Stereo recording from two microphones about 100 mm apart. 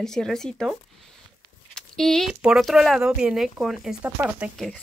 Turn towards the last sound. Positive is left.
turn(degrees=-15)  # may be behind; listen again after turning